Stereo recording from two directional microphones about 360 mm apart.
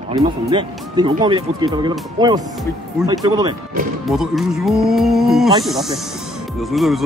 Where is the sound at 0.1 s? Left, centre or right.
Centre.